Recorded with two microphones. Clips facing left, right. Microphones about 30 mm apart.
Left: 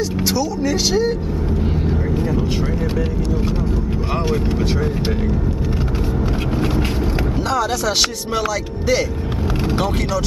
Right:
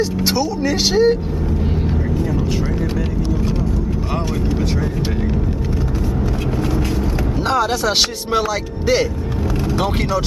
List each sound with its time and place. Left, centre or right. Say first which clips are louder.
0.2 s speech: right 1 dB; centre
7.4 s speech: right 3 dB; centre